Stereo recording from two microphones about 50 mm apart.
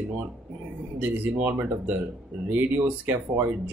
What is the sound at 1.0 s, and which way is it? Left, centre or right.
Speech, right.